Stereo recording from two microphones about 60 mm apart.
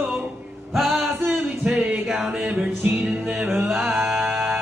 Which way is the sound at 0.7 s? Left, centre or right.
Centre.